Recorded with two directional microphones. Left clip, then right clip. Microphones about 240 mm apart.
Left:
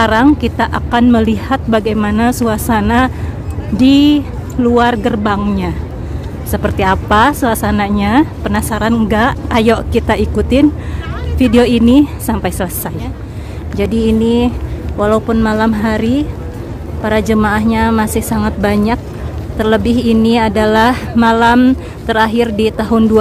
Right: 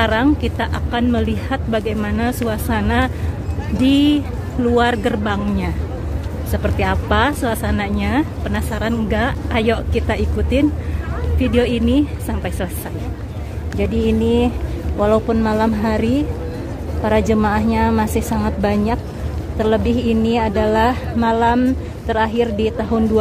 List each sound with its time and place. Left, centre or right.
0.0 s a woman's voice: centre